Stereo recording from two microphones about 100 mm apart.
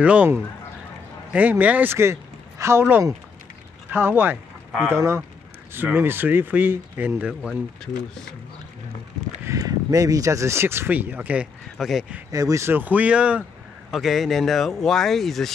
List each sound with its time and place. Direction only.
0.0 s speech: 10° right (ahead or behind)
1.3 s speech: 15° right (ahead or behind)
7.2 s speech: 10° right (ahead or behind)
9.4 s speech: 35° right (ahead or behind); by 12.2 s 5° right (ahead or behind)
12.3 s speech: 35° right (ahead or behind); by 13.4 s 15° right (ahead or behind)
13.4 s speech: 5° left (ahead or behind)